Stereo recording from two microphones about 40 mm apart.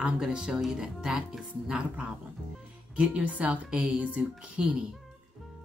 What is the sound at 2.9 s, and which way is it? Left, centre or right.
Speech, right.